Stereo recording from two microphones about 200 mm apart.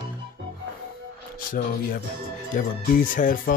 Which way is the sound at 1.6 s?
40° left (ahead or behind).